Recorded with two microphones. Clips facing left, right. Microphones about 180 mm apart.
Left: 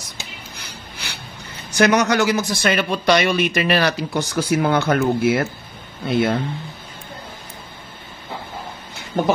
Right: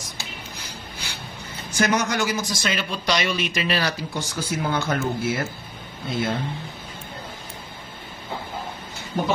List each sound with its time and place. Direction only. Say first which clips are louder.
1.7 s a man's voice: left 6 dB; 70° left (ahead or behind)